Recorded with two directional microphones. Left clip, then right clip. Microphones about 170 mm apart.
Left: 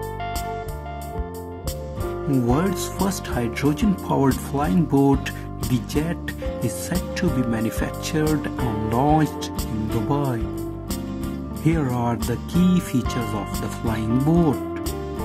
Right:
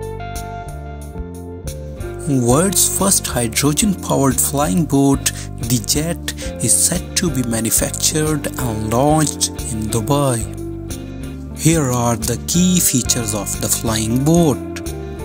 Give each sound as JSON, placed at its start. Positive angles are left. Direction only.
{"t": 2.3, "sound": "speech", "side_deg": -30}
{"t": 10.0, "sound": "speech", "side_deg": -35}
{"t": 11.6, "sound": "speech", "side_deg": -25}